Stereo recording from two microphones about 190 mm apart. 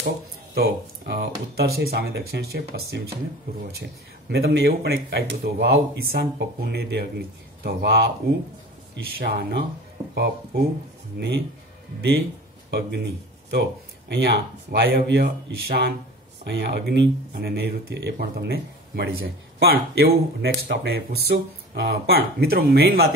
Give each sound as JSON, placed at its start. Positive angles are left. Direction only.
{"t": 0.6, "sound": "speech", "side_deg": -60}
{"t": 4.3, "sound": "speech", "side_deg": -60}
{"t": 12.7, "sound": "speech", "side_deg": -60}